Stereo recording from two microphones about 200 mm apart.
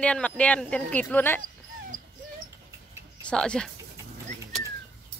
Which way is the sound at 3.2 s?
5° left (ahead or behind).